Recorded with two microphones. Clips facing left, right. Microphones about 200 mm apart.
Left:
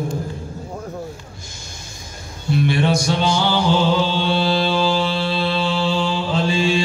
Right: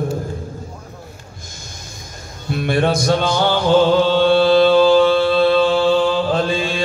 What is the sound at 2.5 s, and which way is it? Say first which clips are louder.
Music: right 1 dB; 50° right (ahead or behind).